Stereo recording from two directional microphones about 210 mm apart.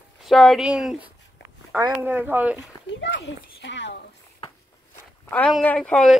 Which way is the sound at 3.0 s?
60° left (ahead or behind).